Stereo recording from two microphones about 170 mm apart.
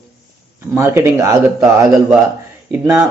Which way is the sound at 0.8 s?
15° right (ahead or behind).